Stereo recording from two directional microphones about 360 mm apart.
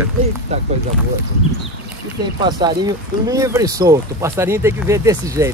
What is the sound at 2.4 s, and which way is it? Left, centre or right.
Speech, centre.